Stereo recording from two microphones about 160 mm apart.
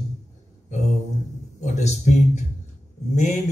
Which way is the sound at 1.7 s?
50° left (ahead or behind).